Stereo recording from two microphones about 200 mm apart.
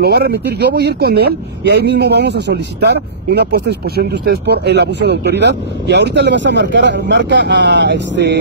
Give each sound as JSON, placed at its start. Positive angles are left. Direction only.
{"t": 0.0, "sound": "speech", "side_deg": -55}